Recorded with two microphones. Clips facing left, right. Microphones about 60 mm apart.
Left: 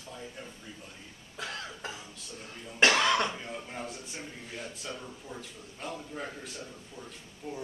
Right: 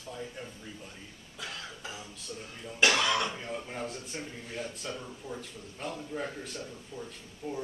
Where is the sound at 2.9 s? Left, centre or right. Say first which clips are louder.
Left 2 dB; left.